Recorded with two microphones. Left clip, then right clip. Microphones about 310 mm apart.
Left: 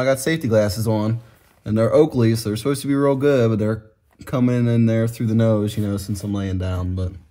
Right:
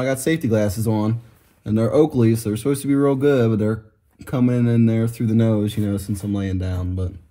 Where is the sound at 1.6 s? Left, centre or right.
Centre.